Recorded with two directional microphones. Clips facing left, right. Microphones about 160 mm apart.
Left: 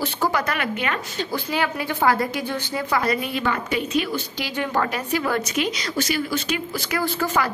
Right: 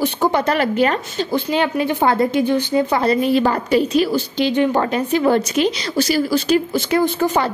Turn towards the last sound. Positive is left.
turn(degrees=-20)  # may be behind; listen again after turning